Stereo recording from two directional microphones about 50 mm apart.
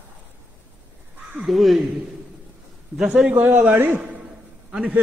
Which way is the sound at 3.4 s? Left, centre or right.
Right.